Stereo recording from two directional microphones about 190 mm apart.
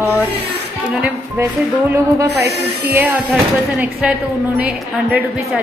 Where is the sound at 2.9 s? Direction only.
10° right (ahead or behind).